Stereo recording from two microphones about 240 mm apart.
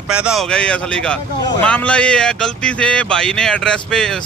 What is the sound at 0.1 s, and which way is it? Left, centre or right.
Speech, centre.